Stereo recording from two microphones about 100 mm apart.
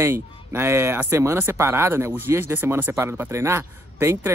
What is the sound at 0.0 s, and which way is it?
Speech, 25° right (ahead or behind).